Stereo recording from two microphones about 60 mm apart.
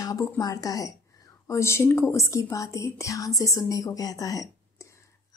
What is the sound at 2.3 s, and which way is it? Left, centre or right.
Speech, left.